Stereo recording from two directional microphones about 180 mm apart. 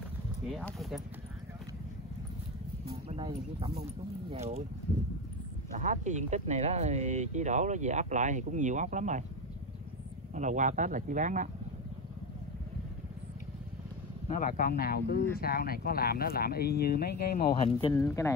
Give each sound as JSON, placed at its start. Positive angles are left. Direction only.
{"t": 0.5, "sound": "speech", "side_deg": 0}
{"t": 2.9, "sound": "speech", "side_deg": -30}
{"t": 5.8, "sound": "speech", "side_deg": -40}
{"t": 10.3, "sound": "speech", "side_deg": -45}
{"t": 14.3, "sound": "speech", "side_deg": 50}
{"t": 17.6, "sound": "speech", "side_deg": 30}
{"t": 17.9, "sound": "speech", "side_deg": 15}